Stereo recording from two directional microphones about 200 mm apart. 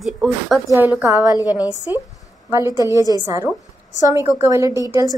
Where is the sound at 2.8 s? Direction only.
15° right (ahead or behind).